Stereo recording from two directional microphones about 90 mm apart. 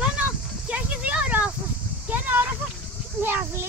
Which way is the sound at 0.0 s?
15° right (ahead or behind).